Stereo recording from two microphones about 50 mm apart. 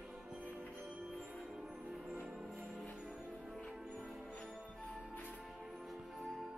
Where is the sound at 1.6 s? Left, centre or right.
Centre.